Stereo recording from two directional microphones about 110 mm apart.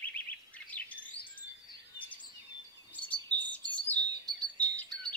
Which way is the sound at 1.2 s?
45° left (ahead or behind).